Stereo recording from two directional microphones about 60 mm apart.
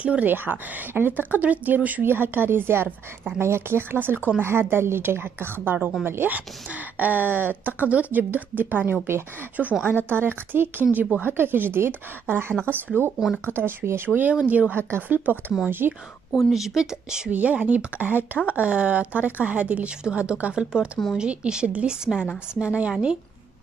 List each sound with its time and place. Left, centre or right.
0.0 s speech: right
0.3 s speech: right
9.6 s a woman's voice: centre
10.0 s speech: right
16.4 s a woman's voice: centre
17.3 s a woman's voice: right